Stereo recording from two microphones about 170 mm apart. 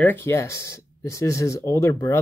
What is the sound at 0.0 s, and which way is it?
Speech, 15° left (ahead or behind).